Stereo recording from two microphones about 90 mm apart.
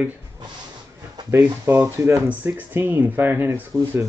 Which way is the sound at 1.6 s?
30° right (ahead or behind).